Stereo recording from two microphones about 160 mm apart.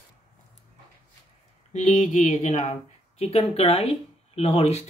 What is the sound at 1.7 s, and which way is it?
Speech, 50° left (ahead or behind).